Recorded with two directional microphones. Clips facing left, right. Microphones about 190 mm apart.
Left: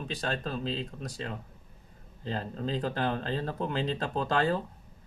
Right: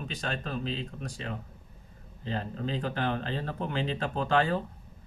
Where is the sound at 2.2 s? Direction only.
35° left (ahead or behind).